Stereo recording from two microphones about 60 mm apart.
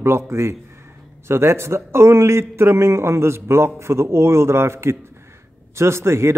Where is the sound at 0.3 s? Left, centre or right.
Right.